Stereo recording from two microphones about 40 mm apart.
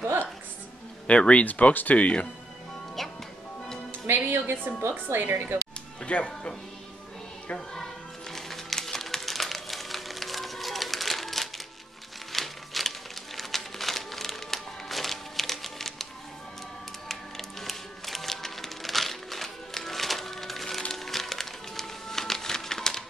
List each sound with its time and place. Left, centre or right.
1.0 s speech: left
1.4 s speech: left
3.0 s music: centre
4.1 s music: right
4.8 s speech: right
5.9 s speech: left
7.5 s music: centre
17.1 s music: centre